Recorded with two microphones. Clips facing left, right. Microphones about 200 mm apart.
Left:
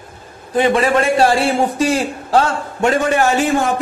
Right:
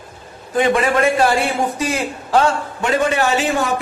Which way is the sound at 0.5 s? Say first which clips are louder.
Left 2 dB; 30° left (ahead or behind).